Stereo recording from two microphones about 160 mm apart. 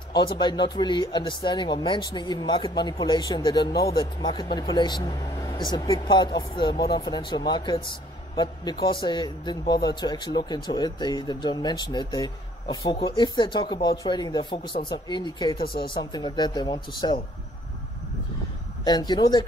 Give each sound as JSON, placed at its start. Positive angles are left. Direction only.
{"t": 0.1, "sound": "speech", "side_deg": 30}
{"t": 15.6, "sound": "speech", "side_deg": 70}
{"t": 15.9, "sound": "speech", "side_deg": 30}
{"t": 18.9, "sound": "speech", "side_deg": 25}